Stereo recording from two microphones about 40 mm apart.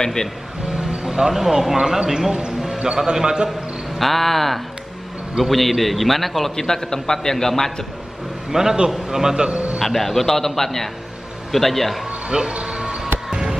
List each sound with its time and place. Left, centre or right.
0.0 s a man's voice: centre
1.3 s speech: centre
2.6 s a sound: centre
3.1 s a man's voice: centre
4.0 s a man's voice: centre
6.5 s a man's voice: centre
8.5 s speech: centre
9.8 s a man's voice: centre
12.3 s music: centre